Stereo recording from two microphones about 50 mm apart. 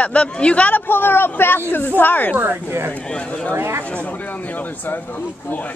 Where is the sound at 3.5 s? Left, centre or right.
Right.